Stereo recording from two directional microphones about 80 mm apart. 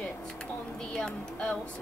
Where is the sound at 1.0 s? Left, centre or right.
Centre.